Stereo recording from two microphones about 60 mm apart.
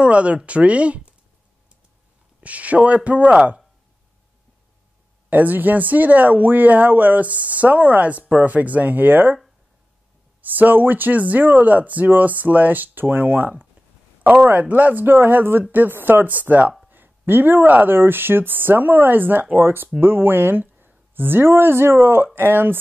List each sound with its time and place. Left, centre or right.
0.0 s speech: right
2.4 s speech: right
5.3 s speech: right
10.5 s speech: right